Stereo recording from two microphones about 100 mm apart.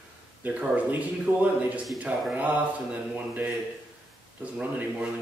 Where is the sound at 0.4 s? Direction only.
15° right (ahead or behind).